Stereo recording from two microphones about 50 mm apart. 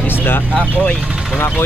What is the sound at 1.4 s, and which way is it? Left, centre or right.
Speech, left.